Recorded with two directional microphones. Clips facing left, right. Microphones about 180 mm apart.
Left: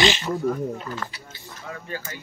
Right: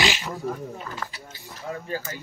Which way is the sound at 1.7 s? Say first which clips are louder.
Right 3 dB; 35° right (ahead or behind).